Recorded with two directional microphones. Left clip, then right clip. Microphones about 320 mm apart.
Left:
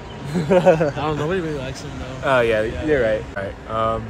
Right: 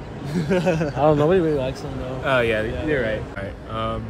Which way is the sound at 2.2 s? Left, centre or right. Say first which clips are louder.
Left 3 dB; centre.